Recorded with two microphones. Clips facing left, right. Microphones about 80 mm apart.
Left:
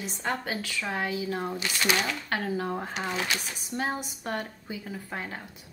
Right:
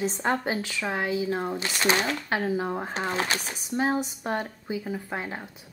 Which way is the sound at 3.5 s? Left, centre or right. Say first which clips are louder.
Right 5 dB; centre.